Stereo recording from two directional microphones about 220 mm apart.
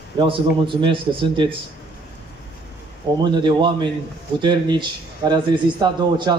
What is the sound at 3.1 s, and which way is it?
Speech, 20° right (ahead or behind).